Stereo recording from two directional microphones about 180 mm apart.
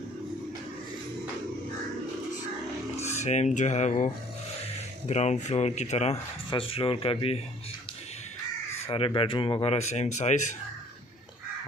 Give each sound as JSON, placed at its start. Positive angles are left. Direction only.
{"t": 3.2, "sound": "speech", "side_deg": 40}
{"t": 8.8, "sound": "speech", "side_deg": 30}